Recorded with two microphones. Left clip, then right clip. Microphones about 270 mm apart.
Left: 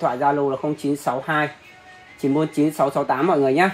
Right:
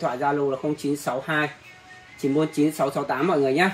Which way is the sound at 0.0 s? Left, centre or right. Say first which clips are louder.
Left 4 dB; left.